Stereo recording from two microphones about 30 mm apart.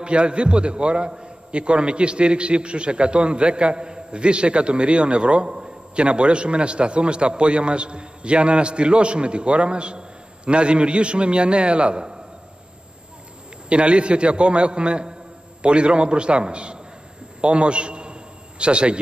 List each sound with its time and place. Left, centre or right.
0.0 s a man's voice: right
13.7 s a man's voice: right
17.4 s a sound: right